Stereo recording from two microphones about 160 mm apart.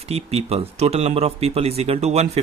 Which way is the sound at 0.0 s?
40° right (ahead or behind).